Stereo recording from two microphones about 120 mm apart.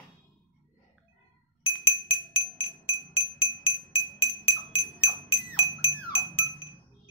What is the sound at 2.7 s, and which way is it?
Music, 50° left (ahead or behind).